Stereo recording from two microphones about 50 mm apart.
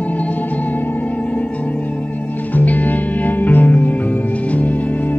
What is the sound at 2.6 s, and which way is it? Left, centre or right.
Music, left.